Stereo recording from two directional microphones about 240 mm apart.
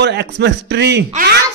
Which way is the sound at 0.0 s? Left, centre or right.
Right.